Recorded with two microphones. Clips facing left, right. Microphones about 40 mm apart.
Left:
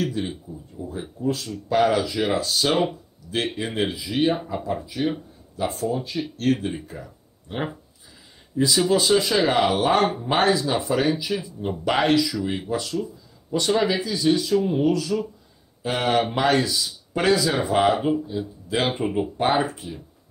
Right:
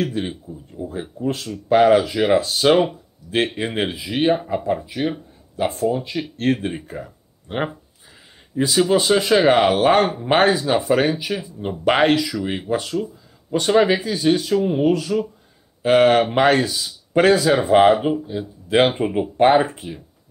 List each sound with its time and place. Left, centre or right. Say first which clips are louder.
0.0 s a sound: right 3 dB; right
1.2 s speech: right 1 dB; right
5.0 s speech: right 2 dB; right
19.3 s speech: right 10 dB; right